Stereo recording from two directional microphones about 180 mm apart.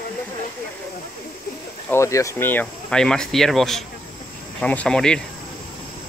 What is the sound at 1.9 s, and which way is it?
Speech, 15° left (ahead or behind).